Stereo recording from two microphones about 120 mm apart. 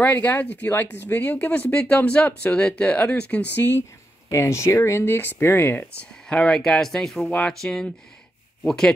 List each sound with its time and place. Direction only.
0.0 s speech: 10° left (ahead or behind)